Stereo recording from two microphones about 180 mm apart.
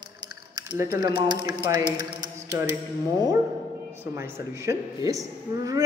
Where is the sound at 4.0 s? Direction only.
15° right (ahead or behind).